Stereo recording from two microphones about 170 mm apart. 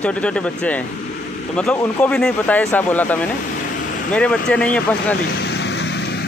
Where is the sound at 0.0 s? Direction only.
5° left (ahead or behind).